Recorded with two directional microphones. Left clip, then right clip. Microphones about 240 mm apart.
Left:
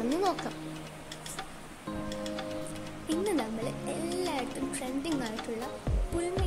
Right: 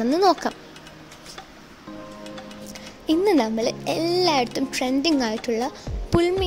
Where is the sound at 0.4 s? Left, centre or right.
Right.